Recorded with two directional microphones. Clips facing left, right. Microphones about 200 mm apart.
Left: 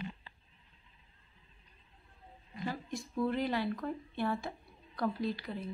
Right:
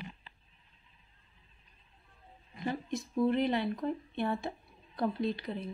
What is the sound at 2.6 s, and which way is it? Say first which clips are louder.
Speech: right 4 dB; 20° right (ahead or behind).